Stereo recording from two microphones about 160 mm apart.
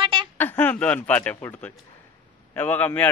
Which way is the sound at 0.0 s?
30° right (ahead or behind).